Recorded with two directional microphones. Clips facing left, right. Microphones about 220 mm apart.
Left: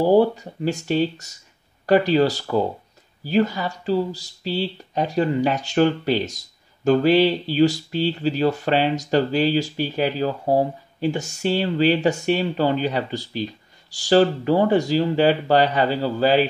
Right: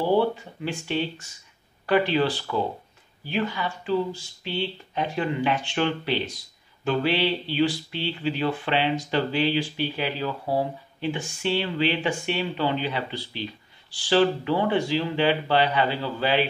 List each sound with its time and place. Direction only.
0.0 s speech: 40° left (ahead or behind)